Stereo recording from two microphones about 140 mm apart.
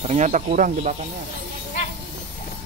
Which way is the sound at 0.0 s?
55° right (ahead or behind).